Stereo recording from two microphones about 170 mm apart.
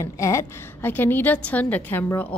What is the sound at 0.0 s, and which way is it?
A woman's voice, 15° left (ahead or behind).